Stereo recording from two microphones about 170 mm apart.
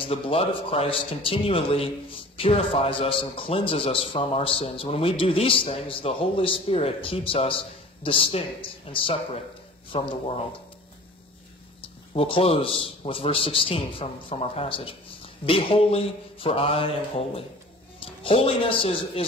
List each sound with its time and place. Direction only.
0.0 s a man's voice: 35° left (ahead or behind)
12.1 s a man's voice: 35° left (ahead or behind)